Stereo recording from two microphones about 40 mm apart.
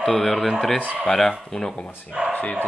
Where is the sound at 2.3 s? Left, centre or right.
Left.